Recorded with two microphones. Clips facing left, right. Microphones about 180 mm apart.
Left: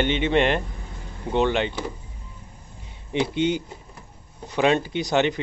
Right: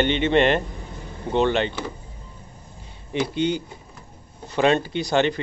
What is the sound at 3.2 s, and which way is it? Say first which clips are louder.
A man's voice: even; 20° left (ahead or behind).